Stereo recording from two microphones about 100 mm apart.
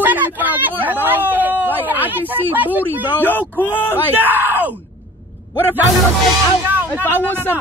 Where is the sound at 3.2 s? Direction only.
20° left (ahead or behind).